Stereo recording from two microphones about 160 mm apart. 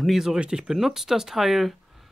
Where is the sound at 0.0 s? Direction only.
Centre (ahead or behind).